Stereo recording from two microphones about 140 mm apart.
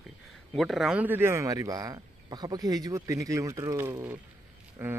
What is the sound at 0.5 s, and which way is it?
Speech, centre (ahead or behind).